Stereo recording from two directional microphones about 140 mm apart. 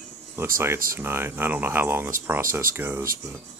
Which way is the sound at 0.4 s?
15° right (ahead or behind).